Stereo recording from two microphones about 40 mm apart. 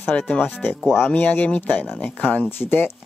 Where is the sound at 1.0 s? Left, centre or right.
Left.